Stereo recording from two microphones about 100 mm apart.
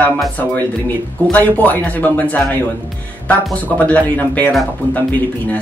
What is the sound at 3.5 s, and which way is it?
Speech, 15° left (ahead or behind).